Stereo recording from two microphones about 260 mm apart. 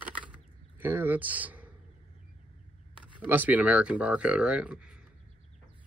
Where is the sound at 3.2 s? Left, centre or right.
Centre.